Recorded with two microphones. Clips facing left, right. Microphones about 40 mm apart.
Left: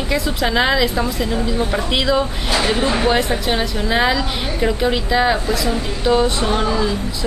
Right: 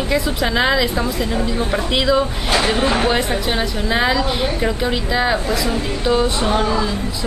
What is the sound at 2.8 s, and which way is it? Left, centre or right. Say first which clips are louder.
Speech: right 1 dB; right.